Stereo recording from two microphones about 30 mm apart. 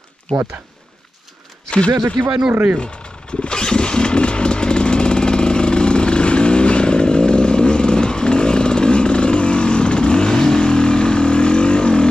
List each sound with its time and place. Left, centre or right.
1.7 s speech: left
2.5 s speech: right
2.8 s vehicle: left